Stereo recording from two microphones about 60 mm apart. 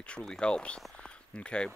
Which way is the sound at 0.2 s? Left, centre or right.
Centre.